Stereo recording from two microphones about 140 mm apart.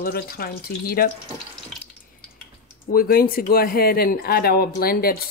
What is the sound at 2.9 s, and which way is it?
Speech, 90° left.